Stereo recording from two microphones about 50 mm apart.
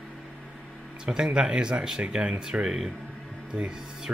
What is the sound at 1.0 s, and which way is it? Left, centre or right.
Speech, centre.